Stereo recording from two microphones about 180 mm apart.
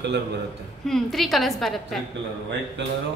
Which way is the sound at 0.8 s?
Centre (ahead or behind).